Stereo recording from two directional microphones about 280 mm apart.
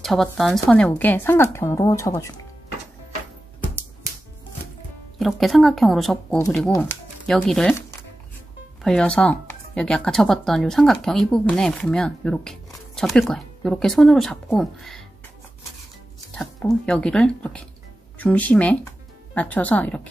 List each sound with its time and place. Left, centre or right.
0.0 s a woman's voice: centre
5.2 s speech: centre
8.8 s speech: centre
16.3 s speech: centre